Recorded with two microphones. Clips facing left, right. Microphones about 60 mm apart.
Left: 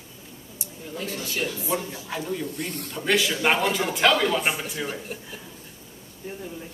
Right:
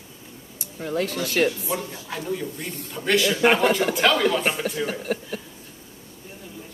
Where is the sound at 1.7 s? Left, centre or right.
Centre.